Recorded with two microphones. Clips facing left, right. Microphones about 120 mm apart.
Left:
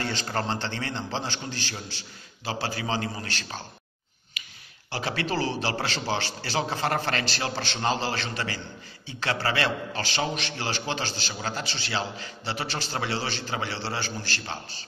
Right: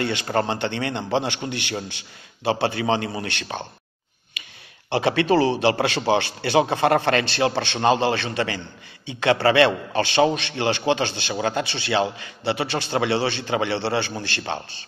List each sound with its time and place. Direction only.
0.0 s a man's voice: 60° right (ahead or behind)
4.8 s a man's voice: 65° right (ahead or behind)
9.0 s a man's voice: 70° right (ahead or behind)